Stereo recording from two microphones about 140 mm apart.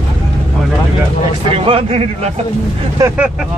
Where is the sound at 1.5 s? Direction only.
40° right (ahead or behind).